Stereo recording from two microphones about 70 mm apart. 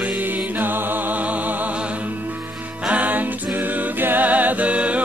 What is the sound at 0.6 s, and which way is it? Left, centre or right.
Music, right.